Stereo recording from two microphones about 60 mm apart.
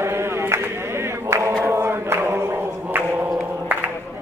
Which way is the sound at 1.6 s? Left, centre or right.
Right.